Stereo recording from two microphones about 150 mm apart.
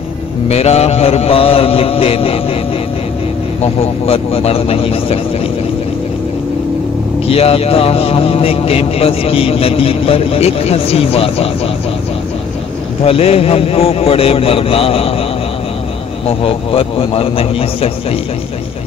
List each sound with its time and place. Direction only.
0.5 s speech: 45° left (ahead or behind)
3.6 s speech: 40° left (ahead or behind)
7.2 s speech: 40° left (ahead or behind)
13.0 s speech: 40° left (ahead or behind)
16.3 s speech: 40° left (ahead or behind)